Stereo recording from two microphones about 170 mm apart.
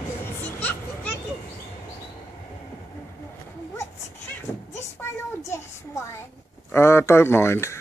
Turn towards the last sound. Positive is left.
turn(degrees=15)  # may be behind; listen again after turning